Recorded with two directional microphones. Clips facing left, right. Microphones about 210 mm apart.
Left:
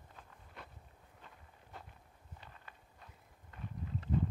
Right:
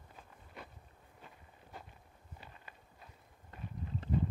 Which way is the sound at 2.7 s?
5° right (ahead or behind).